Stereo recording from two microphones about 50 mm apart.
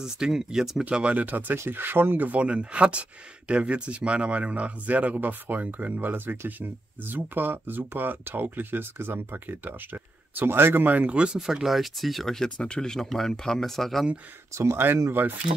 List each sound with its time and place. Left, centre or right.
0.0 s speech: centre
0.8 s speech: right
2.2 s speech: right
10.9 s speech: right
11.3 s speech: centre
12.4 s speech: centre
15.0 s speech: right